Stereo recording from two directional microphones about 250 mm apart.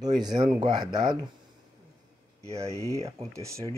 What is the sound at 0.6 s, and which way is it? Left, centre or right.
Speech, centre.